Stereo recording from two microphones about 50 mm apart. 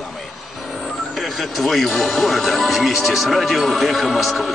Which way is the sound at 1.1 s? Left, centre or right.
Centre.